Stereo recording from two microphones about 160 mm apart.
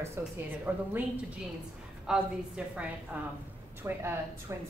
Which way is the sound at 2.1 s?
5° right (ahead or behind).